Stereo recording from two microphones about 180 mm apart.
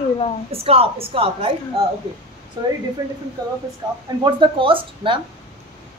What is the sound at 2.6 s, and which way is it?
Speech, 25° right (ahead or behind).